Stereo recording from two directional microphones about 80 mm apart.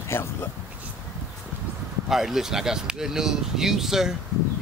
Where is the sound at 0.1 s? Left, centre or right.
Left.